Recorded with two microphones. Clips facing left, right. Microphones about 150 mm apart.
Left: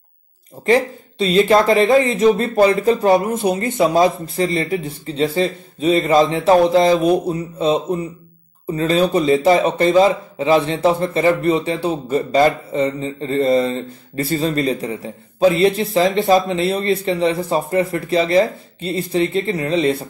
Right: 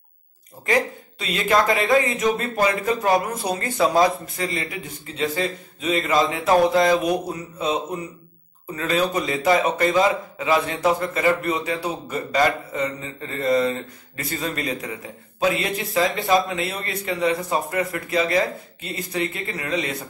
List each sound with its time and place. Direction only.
0.7 s a man's voice: 30° left (ahead or behind)
16.0 s speech: centre (ahead or behind)
16.4 s a man's voice: 30° left (ahead or behind)